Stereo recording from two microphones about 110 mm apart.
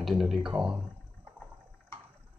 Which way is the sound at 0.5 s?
15° right (ahead or behind).